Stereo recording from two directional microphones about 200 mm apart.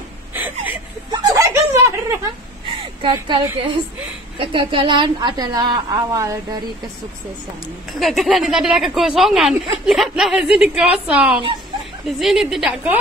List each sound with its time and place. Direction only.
0.3 s chuckle: 10° right (ahead or behind)
1.1 s snicker: 15° right (ahead or behind)
2.6 s a sound: 25° right (ahead or behind)
4.4 s a woman's voice: 25° right (ahead or behind)
8.0 s a woman's voice: centre (ahead or behind)